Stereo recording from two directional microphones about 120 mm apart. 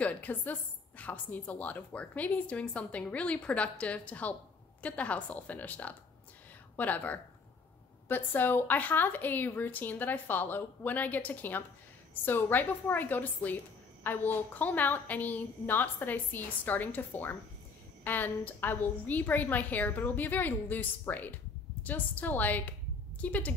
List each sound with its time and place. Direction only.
0.0 s a woman's voice: 15° left (ahead or behind)